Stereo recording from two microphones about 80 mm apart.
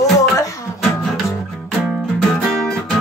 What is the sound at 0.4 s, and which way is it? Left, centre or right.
Music, left.